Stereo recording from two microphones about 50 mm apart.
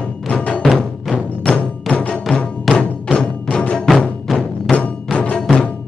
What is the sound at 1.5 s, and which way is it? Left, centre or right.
Music, left.